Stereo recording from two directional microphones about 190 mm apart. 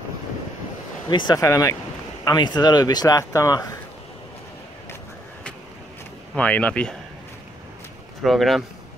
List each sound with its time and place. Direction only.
1.1 s speech: 20° left (ahead or behind)
6.3 s speech: 5° left (ahead or behind)
8.2 s speech: centre (ahead or behind)